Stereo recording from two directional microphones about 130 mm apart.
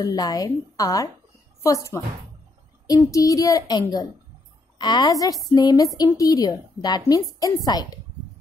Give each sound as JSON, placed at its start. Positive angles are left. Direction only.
{"t": 0.0, "sound": "a woman's voice", "side_deg": 30}